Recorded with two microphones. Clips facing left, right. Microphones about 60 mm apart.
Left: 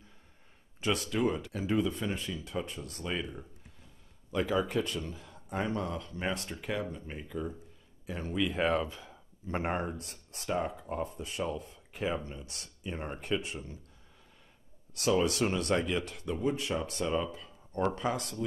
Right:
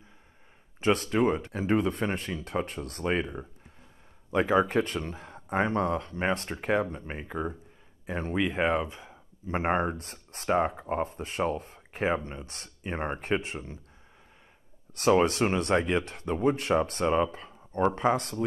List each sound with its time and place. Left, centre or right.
0.7 s speech: right
1.8 s speech: right
9.8 s speech: right
15.0 s speech: right